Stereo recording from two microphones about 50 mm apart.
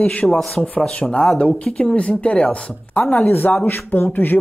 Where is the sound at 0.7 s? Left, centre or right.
Left.